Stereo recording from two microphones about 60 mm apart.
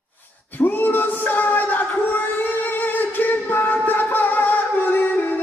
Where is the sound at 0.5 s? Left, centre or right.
Left.